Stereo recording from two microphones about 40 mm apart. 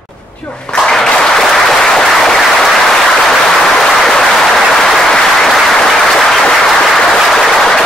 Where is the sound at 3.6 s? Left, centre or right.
Centre.